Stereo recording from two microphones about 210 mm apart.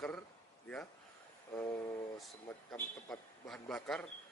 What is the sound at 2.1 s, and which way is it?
A man's voice, centre (ahead or behind).